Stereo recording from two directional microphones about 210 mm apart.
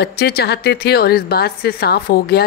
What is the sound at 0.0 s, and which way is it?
A woman's voice, 50° left (ahead or behind).